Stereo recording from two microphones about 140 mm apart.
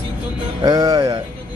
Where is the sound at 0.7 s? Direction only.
25° right (ahead or behind).